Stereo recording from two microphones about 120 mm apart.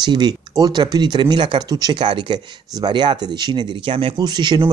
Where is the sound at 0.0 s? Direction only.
35° right (ahead or behind).